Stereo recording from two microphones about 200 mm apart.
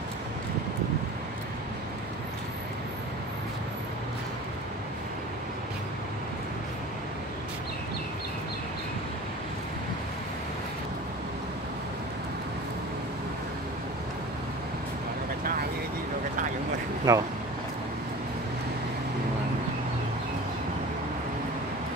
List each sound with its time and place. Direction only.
17.1 s speech: 20° right (ahead or behind)